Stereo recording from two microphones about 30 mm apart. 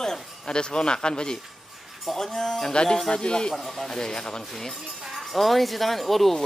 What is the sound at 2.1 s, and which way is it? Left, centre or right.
Speech, centre.